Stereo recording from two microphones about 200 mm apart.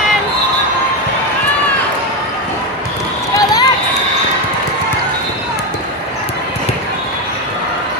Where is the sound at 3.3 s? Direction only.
20° left (ahead or behind).